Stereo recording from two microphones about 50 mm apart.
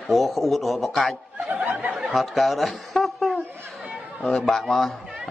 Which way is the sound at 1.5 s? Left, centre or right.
Right.